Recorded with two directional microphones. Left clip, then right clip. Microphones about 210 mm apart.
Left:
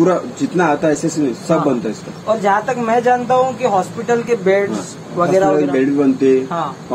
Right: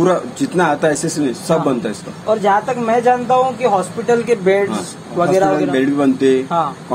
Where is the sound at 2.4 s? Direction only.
10° right (ahead or behind).